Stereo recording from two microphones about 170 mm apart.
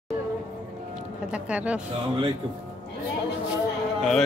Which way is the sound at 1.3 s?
5° right (ahead or behind).